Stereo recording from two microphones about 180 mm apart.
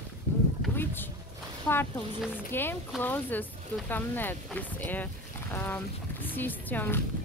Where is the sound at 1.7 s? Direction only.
20° left (ahead or behind).